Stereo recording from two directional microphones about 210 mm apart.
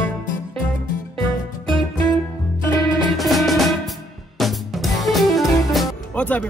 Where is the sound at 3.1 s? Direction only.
Centre (ahead or behind).